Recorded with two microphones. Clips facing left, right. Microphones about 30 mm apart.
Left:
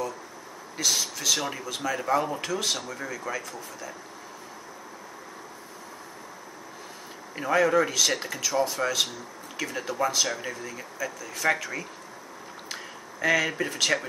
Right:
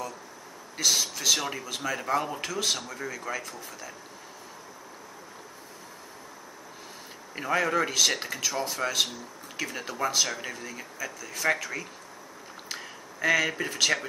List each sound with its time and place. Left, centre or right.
0.7 s speech: centre
7.3 s speech: centre
12.6 s a sound: centre